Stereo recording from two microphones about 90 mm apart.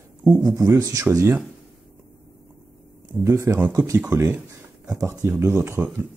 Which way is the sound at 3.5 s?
25° right (ahead or behind).